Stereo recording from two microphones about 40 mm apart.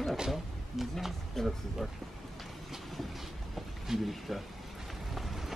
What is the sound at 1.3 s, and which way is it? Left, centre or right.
Speech, centre.